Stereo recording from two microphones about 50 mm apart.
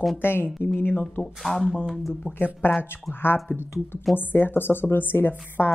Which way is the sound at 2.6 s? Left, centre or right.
Left.